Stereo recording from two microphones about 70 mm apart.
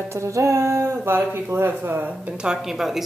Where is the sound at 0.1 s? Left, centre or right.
Right.